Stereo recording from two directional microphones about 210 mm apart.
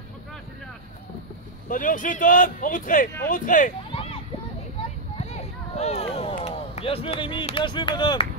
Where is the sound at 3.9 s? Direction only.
25° left (ahead or behind).